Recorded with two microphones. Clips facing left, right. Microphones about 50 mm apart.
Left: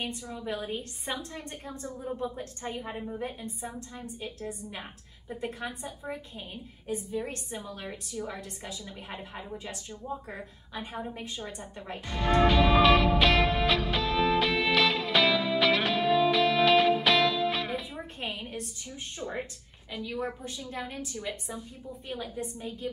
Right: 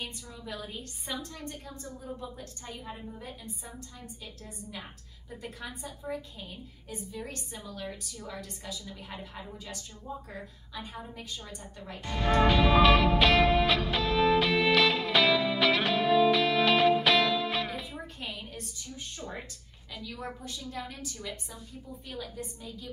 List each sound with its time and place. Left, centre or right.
0.0 s a woman's voice: left
12.4 s music: centre
18.2 s a sound: left
19.1 s a woman's voice: left